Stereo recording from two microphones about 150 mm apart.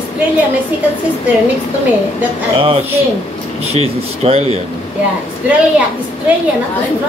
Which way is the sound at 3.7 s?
45° right (ahead or behind).